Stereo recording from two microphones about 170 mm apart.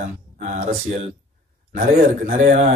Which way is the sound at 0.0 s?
45° right (ahead or behind).